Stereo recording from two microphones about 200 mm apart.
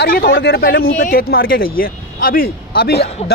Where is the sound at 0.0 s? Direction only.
50° left (ahead or behind).